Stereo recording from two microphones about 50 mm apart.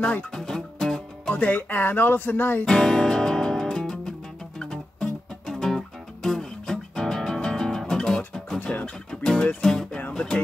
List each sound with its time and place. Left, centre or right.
0.3 s music: centre
1.3 s speech: left
2.6 s music: centre
8.7 s music: left